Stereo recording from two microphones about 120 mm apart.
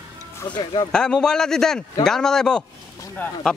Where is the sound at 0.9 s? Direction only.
5° left (ahead or behind).